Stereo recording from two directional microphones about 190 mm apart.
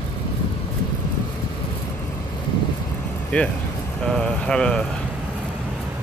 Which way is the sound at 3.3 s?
5° left (ahead or behind).